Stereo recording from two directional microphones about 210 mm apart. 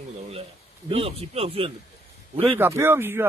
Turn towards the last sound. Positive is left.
turn(degrees=-10)  # may be behind; listen again after turning